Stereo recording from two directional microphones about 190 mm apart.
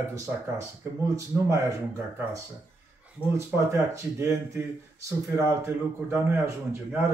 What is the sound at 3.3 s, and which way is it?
Speech, 15° right (ahead or behind).